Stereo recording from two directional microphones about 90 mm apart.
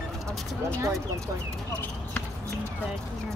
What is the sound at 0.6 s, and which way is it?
Speech, 25° right (ahead or behind).